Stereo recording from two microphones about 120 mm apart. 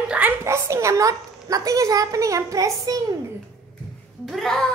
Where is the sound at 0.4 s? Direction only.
25° right (ahead or behind).